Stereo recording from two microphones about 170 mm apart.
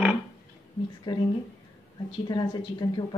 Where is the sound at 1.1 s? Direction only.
30° left (ahead or behind).